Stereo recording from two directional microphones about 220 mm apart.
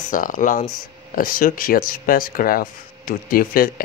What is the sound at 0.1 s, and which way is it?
Speech, 35° left (ahead or behind).